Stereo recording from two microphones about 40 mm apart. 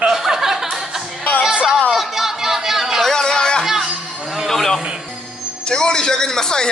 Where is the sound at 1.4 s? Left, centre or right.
Centre.